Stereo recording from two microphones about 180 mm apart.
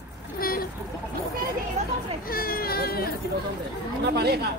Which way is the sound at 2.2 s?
55° left (ahead or behind).